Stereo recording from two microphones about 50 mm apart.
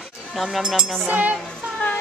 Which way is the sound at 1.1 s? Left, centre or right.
Right.